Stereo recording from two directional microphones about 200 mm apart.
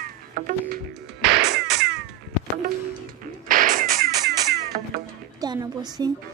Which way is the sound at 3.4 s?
40° right (ahead or behind).